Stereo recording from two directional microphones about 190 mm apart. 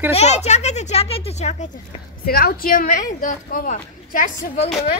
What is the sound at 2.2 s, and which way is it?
A woman's voice, 50° left (ahead or behind).